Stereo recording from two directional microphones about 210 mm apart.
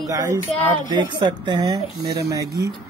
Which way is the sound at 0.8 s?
20° right (ahead or behind).